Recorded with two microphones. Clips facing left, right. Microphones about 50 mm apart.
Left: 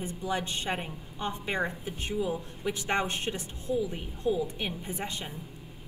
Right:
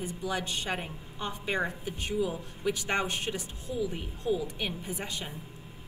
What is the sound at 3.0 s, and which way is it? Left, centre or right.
Speech, left.